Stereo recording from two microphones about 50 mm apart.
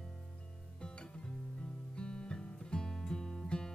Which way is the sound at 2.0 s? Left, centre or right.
Centre.